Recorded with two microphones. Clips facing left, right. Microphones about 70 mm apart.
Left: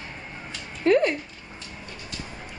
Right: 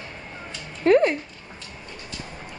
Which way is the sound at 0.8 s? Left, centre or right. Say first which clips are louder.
Right 3 dB; centre.